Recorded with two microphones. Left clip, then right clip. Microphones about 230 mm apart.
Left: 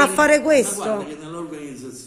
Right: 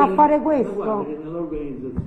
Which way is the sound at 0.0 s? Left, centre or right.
Left.